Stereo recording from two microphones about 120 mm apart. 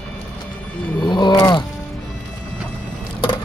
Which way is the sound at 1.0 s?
40° left (ahead or behind).